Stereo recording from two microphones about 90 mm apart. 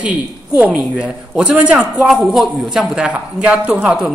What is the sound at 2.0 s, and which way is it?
A woman's voice, centre (ahead or behind).